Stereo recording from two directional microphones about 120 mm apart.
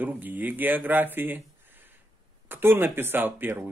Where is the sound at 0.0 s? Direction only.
15° right (ahead or behind).